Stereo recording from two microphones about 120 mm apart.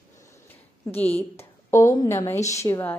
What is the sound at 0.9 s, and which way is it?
Speech, 60° left (ahead or behind).